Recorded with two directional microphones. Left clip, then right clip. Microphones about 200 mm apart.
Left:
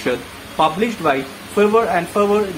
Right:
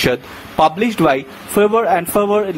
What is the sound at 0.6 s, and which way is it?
Speech, 50° right (ahead or behind).